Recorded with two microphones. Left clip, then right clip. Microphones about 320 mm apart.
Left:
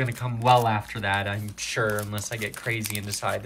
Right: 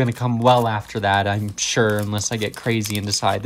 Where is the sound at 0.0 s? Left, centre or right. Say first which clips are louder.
Right 7 dB; centre.